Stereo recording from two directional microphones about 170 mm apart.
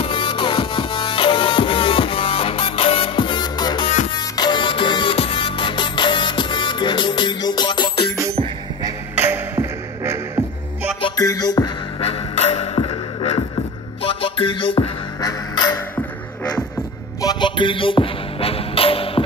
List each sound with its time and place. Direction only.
0.0 s music: 30° left (ahead or behind)
8.8 s music: 15° right (ahead or behind)
11.0 s music: 25° left (ahead or behind)
12.0 s music: 40° left (ahead or behind)
17.2 s music: 25° left (ahead or behind)